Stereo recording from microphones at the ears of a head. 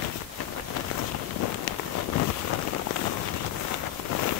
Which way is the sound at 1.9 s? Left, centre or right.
Left.